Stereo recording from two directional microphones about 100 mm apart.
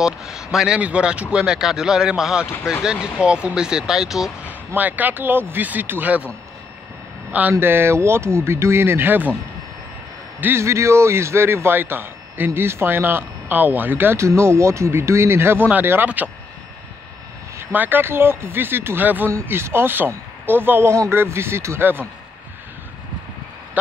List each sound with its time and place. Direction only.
0.0 s speech: 5° right (ahead or behind)
4.6 s speech: 15° right (ahead or behind)
7.5 s speech: 25° right (ahead or behind)
10.4 s speech: 25° right (ahead or behind)
17.6 s speech: 20° right (ahead or behind)